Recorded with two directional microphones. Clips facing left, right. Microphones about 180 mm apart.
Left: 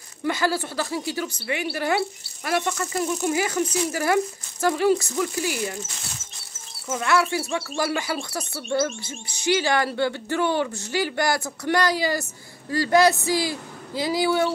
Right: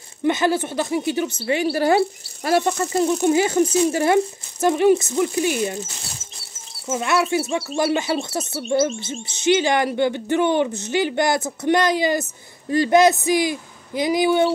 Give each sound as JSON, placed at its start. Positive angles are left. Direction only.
{"t": 0.2, "sound": "speech", "side_deg": -20}
{"t": 6.9, "sound": "speech", "side_deg": -20}